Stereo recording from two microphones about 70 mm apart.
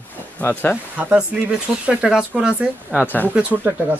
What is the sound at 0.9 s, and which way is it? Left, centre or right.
Speech, centre.